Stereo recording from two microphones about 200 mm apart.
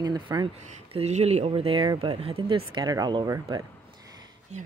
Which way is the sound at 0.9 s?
30° right (ahead or behind).